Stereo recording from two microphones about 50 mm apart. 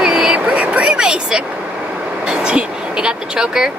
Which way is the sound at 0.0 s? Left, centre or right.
Centre.